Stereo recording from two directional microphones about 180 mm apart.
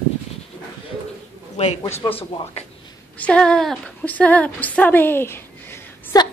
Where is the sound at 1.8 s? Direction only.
15° left (ahead or behind).